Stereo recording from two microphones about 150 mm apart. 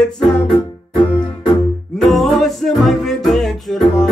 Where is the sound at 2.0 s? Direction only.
Centre (ahead or behind).